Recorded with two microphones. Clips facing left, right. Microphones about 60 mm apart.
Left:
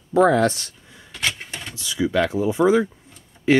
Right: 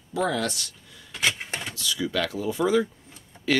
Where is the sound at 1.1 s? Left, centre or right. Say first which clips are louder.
Even; centre.